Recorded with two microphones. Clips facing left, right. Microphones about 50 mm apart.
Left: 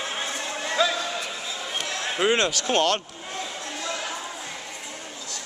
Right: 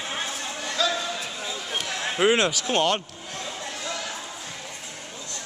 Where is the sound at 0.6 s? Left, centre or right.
Left.